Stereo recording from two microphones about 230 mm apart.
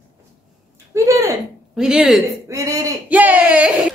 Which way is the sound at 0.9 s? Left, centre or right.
Centre.